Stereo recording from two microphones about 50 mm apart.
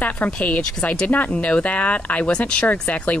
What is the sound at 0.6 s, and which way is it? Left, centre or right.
Speech, centre.